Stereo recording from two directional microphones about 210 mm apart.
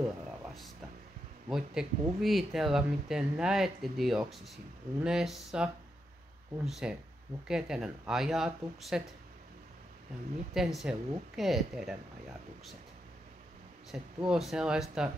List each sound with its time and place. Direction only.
1.5 s speech: centre (ahead or behind)
10.5 s speech: centre (ahead or behind)
13.9 s speech: 5° right (ahead or behind)